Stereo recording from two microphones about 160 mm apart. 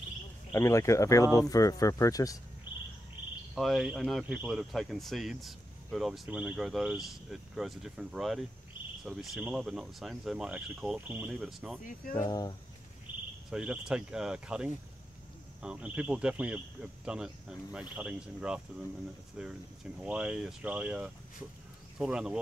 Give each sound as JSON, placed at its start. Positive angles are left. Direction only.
{"t": 0.5, "sound": "speech", "side_deg": 20}
{"t": 3.5, "sound": "speech", "side_deg": 0}
{"t": 12.3, "sound": "speech", "side_deg": 30}
{"t": 13.1, "sound": "cricket", "side_deg": 30}
{"t": 13.5, "sound": "speech", "side_deg": -5}